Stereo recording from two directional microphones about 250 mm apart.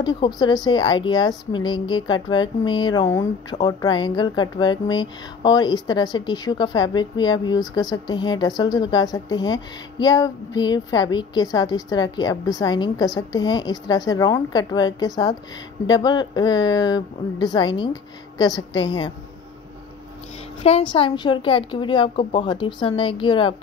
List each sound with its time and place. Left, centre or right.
0.0 s speech: centre
20.6 s speech: left